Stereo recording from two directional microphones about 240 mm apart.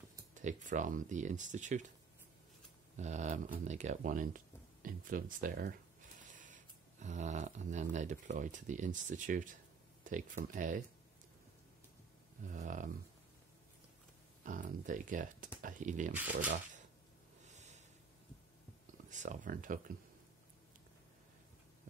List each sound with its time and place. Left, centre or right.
0.3 s speech: right
3.0 s speech: right
12.4 s speech: right
14.4 s speech: right
16.1 s speech: centre
16.4 s speech: right
19.0 s speech: right